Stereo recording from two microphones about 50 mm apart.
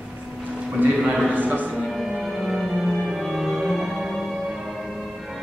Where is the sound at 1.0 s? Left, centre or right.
Centre.